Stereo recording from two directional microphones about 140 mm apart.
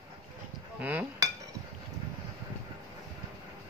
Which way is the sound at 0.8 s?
10° right (ahead or behind).